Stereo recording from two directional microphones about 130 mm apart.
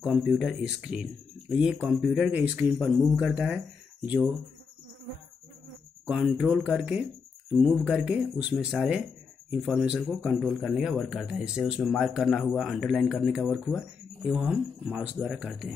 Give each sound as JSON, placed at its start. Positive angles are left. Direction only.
{"t": 0.1, "sound": "speech", "side_deg": 0}
{"t": 6.0, "sound": "speech", "side_deg": -5}